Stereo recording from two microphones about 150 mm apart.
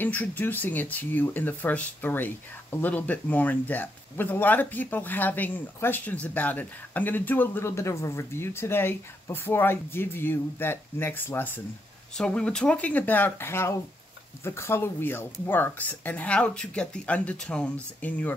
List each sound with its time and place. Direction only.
0.0 s speech: 10° left (ahead or behind)